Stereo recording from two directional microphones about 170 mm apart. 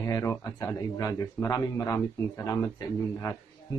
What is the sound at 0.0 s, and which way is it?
A man's voice, 15° left (ahead or behind).